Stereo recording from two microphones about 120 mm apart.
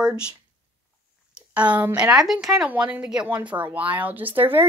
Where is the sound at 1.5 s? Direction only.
10° right (ahead or behind).